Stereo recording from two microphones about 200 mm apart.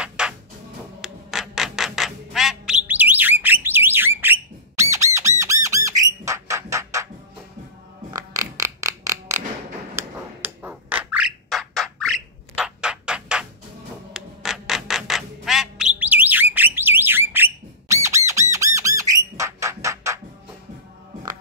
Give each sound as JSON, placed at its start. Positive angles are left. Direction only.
{"t": 0.2, "sound": "music", "side_deg": -5}
{"t": 1.0, "sound": "squawk", "side_deg": 0}
{"t": 8.1, "sound": "a sound", "side_deg": -15}
{"t": 14.1, "sound": "squawk", "side_deg": 0}